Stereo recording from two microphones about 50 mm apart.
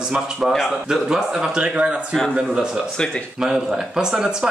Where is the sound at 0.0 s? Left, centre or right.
Centre.